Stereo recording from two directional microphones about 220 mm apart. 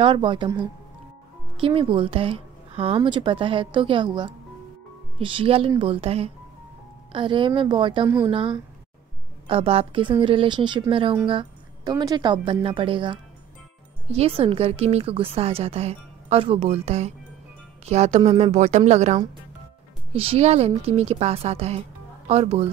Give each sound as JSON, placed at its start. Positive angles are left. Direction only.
{"t": 0.0, "sound": "a woman's voice", "side_deg": -20}